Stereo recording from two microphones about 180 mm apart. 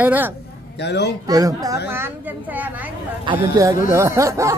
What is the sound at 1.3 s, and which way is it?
Speech, 20° right (ahead or behind).